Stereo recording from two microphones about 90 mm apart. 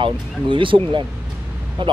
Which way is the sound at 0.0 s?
65° right (ahead or behind).